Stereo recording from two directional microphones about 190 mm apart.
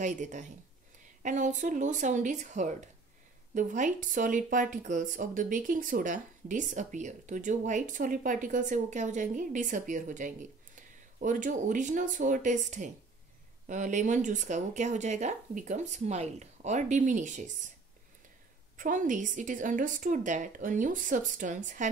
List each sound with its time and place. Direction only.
0.0 s speech: 40° right (ahead or behind)
18.8 s speech: 45° right (ahead or behind)